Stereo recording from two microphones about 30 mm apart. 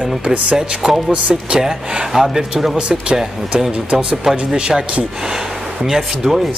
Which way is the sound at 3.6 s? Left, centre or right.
Centre.